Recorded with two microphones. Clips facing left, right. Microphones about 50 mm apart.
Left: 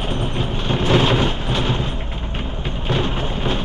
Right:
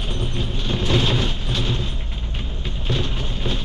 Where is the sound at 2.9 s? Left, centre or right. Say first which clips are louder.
Left 5 dB; left.